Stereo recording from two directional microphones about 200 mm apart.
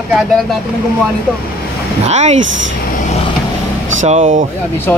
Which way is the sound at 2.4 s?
70° right (ahead or behind).